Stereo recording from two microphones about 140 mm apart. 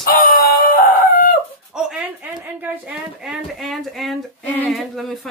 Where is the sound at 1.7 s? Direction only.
5° right (ahead or behind).